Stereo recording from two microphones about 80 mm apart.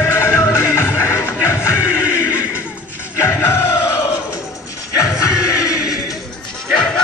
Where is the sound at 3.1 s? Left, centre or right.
Left.